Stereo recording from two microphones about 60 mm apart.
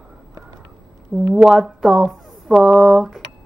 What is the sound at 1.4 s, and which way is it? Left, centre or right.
Speech, centre.